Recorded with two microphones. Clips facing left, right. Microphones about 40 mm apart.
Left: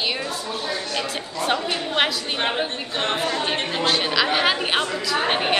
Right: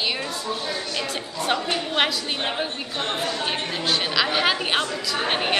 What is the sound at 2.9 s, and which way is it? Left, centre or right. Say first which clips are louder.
Speech: left 3 dB; left.